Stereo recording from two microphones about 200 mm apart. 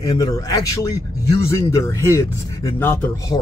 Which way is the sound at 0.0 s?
20° left (ahead or behind).